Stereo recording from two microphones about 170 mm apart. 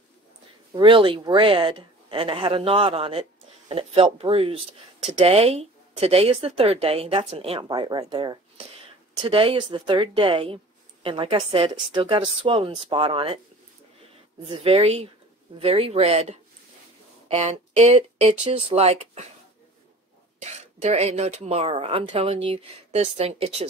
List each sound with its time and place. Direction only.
0.7 s speech: 30° right (ahead or behind)
14.5 s speech: 35° right (ahead or behind)
20.3 s speech: 40° right (ahead or behind)